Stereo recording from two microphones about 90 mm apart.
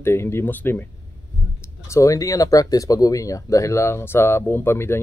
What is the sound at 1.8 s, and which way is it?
Speech, 35° left (ahead or behind).